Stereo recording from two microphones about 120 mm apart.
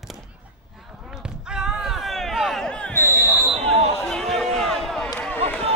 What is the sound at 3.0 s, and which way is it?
Basketball bounce, 25° left (ahead or behind).